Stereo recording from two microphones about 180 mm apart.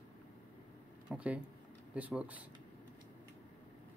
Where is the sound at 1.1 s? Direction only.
5° right (ahead or behind).